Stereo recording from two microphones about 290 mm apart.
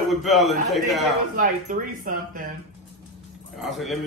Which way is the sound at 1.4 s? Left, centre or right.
Right.